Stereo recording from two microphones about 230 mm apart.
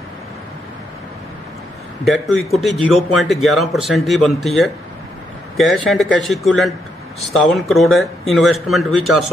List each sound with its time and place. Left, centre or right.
2.0 s speech: centre